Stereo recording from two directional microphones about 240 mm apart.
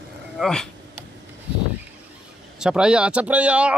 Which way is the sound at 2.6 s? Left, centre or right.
Centre.